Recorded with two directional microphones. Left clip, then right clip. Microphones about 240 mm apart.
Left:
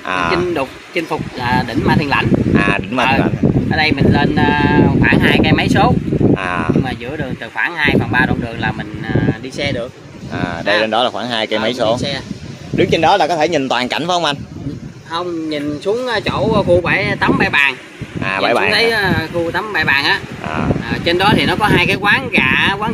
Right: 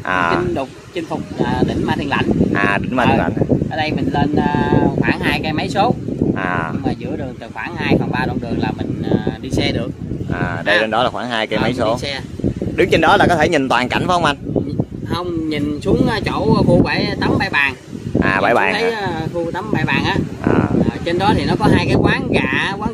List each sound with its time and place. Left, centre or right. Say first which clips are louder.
0.1 s speech: left 1 dB; centre
9.6 s speech: right 1 dB; right
10.3 s speech: even; centre
12.7 s speech: left 1 dB; centre
15.1 s speech: left 1 dB; right
16.8 s speech: left 4 dB; right; by 22.8 s centre